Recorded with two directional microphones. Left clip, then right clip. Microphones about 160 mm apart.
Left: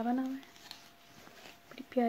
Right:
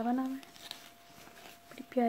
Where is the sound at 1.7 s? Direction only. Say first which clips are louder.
Right 1 dB; centre (ahead or behind).